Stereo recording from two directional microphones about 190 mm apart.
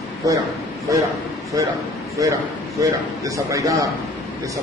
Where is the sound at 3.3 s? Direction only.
15° right (ahead or behind).